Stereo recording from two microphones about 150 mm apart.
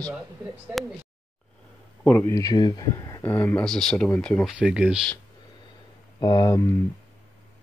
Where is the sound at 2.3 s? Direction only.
25° left (ahead or behind); by 4.5 s 5° left (ahead or behind).